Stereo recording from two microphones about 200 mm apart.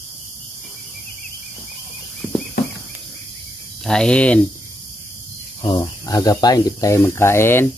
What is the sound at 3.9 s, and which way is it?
Speech, 5° left (ahead or behind).